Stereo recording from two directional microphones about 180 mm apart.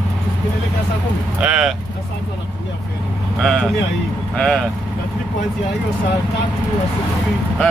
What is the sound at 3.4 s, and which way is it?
Speech, centre (ahead or behind).